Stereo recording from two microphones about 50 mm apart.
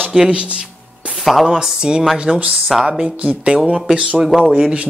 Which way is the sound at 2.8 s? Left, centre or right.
Centre.